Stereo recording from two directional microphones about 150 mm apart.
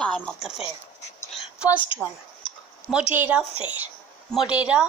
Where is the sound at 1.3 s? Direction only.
5° right (ahead or behind).